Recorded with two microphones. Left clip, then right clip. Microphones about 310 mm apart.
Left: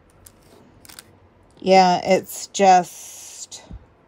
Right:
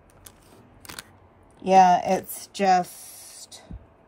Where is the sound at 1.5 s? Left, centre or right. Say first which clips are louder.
Left 2 dB; centre.